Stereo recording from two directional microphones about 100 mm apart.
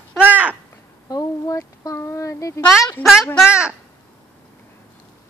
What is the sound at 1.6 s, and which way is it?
Child singing, 30° left (ahead or behind).